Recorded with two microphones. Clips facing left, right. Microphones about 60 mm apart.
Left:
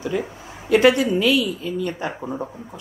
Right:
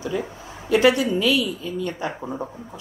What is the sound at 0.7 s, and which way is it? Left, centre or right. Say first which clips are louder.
A woman's voice: left 2 dB; left.